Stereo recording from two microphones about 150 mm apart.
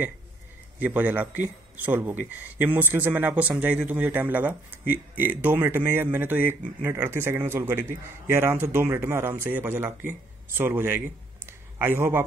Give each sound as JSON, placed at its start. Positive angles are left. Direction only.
{"t": 0.7, "sound": "a man's voice", "side_deg": -10}